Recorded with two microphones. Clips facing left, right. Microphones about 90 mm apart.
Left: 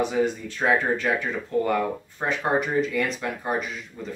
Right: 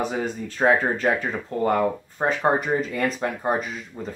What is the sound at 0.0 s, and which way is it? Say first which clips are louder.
Speech: left 3 dB; 40° right (ahead or behind).